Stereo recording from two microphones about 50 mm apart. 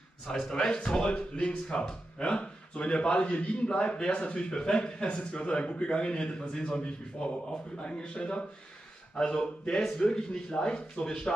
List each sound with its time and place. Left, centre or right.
0.3 s speech: centre